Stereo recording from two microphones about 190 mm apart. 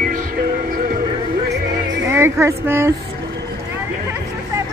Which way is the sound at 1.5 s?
70° right (ahead or behind).